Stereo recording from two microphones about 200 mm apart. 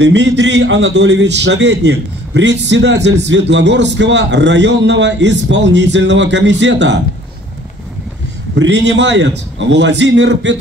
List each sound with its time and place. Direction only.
0.0 s a man's voice: 60° right (ahead or behind)
8.5 s a man's voice: 60° right (ahead or behind)